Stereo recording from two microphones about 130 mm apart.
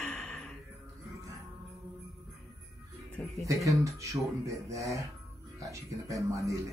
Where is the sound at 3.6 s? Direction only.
25° right (ahead or behind).